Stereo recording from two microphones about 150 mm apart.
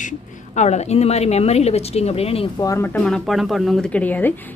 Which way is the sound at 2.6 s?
25° left (ahead or behind).